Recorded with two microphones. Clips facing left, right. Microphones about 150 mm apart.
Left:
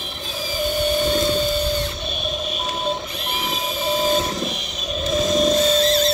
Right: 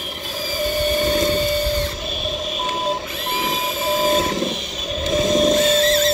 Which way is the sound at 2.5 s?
20° right (ahead or behind).